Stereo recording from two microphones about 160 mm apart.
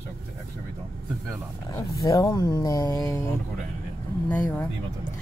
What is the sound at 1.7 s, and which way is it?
Speech, 20° left (ahead or behind).